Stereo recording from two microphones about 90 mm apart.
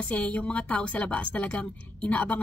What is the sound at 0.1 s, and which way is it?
A woman's voice, 10° left (ahead or behind).